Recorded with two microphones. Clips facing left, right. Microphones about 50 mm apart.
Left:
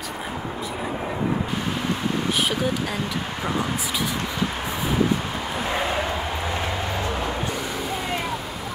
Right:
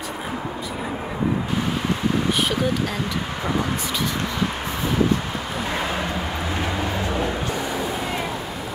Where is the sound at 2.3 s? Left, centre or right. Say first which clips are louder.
Right 1 dB; centre.